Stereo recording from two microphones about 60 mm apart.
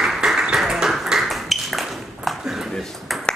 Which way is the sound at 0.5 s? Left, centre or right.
Centre.